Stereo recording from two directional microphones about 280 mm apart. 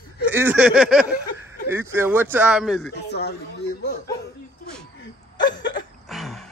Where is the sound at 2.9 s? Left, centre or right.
Left.